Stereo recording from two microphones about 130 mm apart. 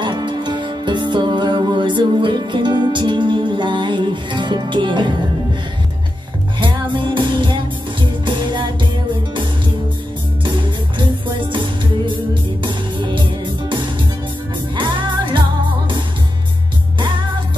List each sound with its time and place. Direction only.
0.0 s music: 35° right (ahead or behind)
6.6 s music: 40° right (ahead or behind)
10.4 s music: 40° right (ahead or behind)